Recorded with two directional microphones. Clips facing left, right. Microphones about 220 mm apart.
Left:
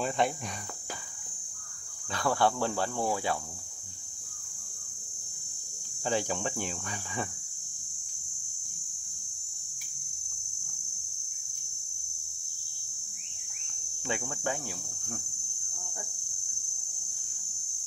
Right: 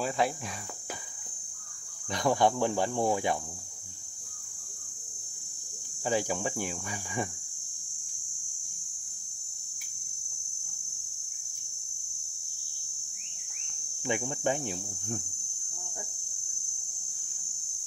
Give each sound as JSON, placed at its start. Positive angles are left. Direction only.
{"t": 0.2, "sound": "cricket", "side_deg": -5}
{"t": 2.0, "sound": "speech", "side_deg": -15}
{"t": 6.0, "sound": "speech", "side_deg": -10}
{"t": 14.0, "sound": "speech", "side_deg": -20}